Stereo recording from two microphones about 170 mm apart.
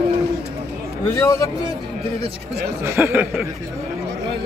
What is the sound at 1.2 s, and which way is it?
Speech, 20° left (ahead or behind).